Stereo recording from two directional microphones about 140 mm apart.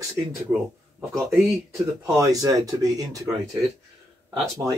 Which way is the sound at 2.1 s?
25° right (ahead or behind).